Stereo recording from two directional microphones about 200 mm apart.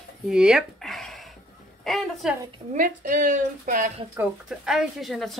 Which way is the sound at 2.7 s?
45° right (ahead or behind).